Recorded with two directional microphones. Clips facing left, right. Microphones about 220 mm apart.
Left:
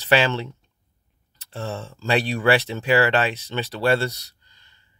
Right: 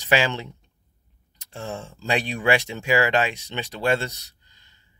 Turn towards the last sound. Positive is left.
turn(degrees=-15)  # may be behind; listen again after turning